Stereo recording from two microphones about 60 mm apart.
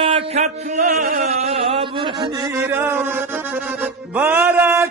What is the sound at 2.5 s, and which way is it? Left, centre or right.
Music, right.